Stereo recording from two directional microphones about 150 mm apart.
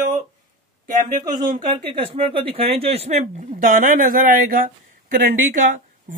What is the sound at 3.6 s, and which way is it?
Speech, 65° right (ahead or behind).